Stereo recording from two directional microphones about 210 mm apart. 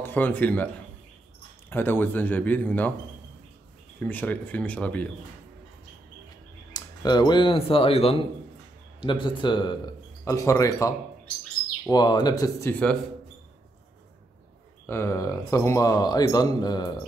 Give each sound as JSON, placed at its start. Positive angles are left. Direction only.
{"t": 0.0, "sound": "speech", "side_deg": 10}
{"t": 1.7, "sound": "speech", "side_deg": 10}
{"t": 4.0, "sound": "speech", "side_deg": 10}
{"t": 6.7, "sound": "speech", "side_deg": 20}
{"t": 14.9, "sound": "speech", "side_deg": 15}